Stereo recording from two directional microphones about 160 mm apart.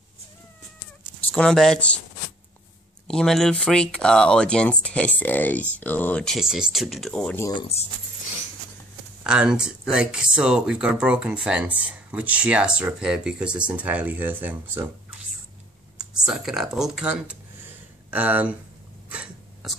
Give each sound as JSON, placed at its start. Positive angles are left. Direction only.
{"t": 1.2, "sound": "speech", "side_deg": 5}
{"t": 3.1, "sound": "speech", "side_deg": 5}
{"t": 7.3, "sound": "speech", "side_deg": 20}
{"t": 9.2, "sound": "speech", "side_deg": -5}
{"t": 16.0, "sound": "speech", "side_deg": -5}
{"t": 19.0, "sound": "cough", "side_deg": -5}